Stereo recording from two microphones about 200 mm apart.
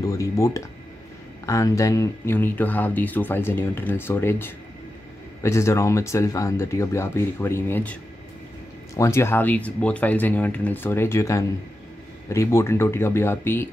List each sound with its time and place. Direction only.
0.0 s speech: 15° left (ahead or behind)